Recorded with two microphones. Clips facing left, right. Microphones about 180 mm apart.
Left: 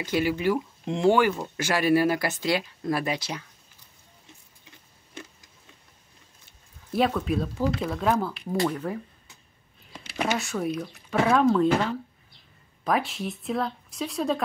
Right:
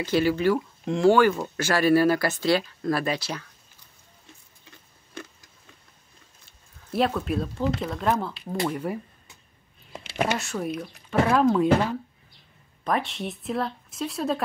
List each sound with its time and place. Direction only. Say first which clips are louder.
0.0 s speech: right 3 dB; 15° left (ahead or behind)
6.9 s speech: even; centre (ahead or behind)
8.6 s speech: even; 10° right (ahead or behind)
10.2 s speech: even; centre (ahead or behind)
11.5 s speech: right 1 dB; 10° right (ahead or behind)
12.8 s speech: left 1 dB; centre (ahead or behind)